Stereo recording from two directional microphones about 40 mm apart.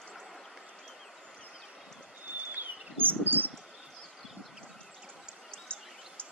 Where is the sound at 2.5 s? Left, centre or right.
Right.